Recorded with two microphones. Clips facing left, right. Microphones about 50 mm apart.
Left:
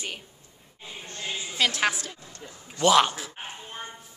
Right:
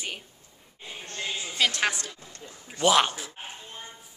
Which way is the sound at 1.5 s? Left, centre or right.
Centre.